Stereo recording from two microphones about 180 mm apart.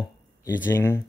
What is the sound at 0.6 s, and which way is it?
Speech, 15° left (ahead or behind).